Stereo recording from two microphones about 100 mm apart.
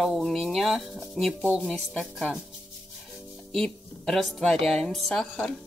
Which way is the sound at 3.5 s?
5° left (ahead or behind).